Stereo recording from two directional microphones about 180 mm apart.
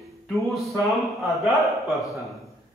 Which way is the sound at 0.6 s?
Centre (ahead or behind).